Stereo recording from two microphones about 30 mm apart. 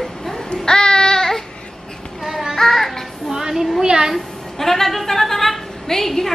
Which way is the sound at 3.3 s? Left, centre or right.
Centre.